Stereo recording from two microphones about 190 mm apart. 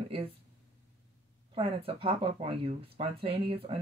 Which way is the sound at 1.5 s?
30° right (ahead or behind).